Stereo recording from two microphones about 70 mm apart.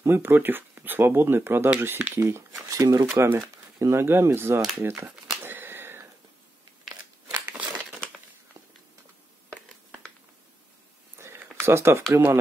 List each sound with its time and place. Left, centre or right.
0.0 s speech: right
2.7 s speech: right
3.2 s speech: right
5.4 s a sound: right
7.2 s scissors: right
11.1 s a sound: right
12.1 s speech: right